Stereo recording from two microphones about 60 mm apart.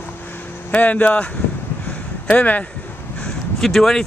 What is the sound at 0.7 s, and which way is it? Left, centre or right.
Speech, left.